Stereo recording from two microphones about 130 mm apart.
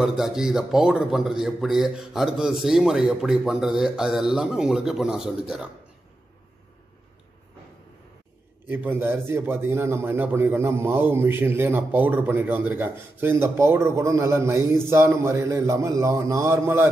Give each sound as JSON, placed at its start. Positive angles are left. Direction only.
{"t": 0.0, "sound": "a man's voice", "side_deg": -5}
{"t": 8.6, "sound": "a man's voice", "side_deg": -15}